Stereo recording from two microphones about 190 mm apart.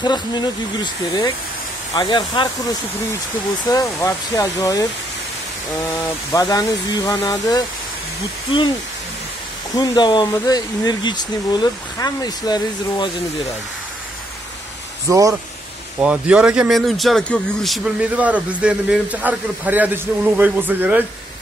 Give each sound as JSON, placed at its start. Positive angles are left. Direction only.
{"t": 0.0, "sound": "speech", "side_deg": 25}
{"t": 2.0, "sound": "speech", "side_deg": 25}
{"t": 3.6, "sound": "speech", "side_deg": 20}
{"t": 6.3, "sound": "speech", "side_deg": 20}
{"t": 9.8, "sound": "speech", "side_deg": 25}
{"t": 15.0, "sound": "speech", "side_deg": -15}
{"t": 16.0, "sound": "a man's voice", "side_deg": -5}